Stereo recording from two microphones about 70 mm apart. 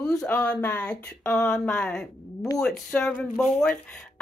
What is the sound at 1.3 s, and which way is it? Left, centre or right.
Speech, centre.